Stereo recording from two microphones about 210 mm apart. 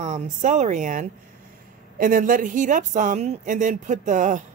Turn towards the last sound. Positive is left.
turn(degrees=-35)  # may be behind; listen again after turning